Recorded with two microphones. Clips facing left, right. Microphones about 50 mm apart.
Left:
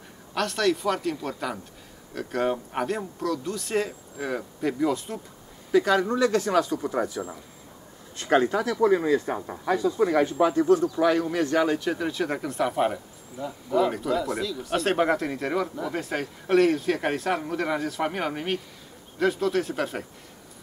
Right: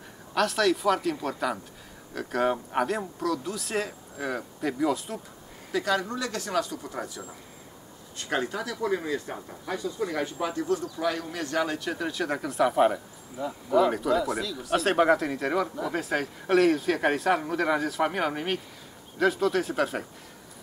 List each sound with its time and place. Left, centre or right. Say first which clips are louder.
0.3 s speech: right 1 dB; centre; by 7.2 s left
8.3 s a man's voice: left 8 dB; left
9.2 s speech: left 7 dB; left
10.4 s a man's voice: left 8 dB; left
11.5 s speech: left 2 dB; centre